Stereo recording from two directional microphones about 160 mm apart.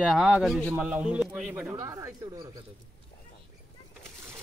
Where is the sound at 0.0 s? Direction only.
5° right (ahead or behind).